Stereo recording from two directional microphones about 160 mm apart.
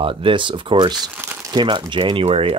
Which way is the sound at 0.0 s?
35° right (ahead or behind).